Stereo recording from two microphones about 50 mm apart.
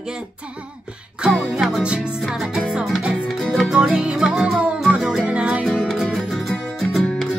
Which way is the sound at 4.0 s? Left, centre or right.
Centre.